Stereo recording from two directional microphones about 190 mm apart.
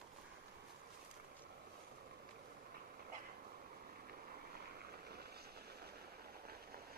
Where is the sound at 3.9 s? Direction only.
50° right (ahead or behind).